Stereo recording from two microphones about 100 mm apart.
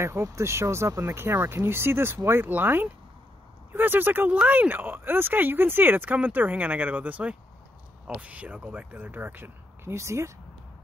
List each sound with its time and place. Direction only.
0.0 s speech: 30° right (ahead or behind)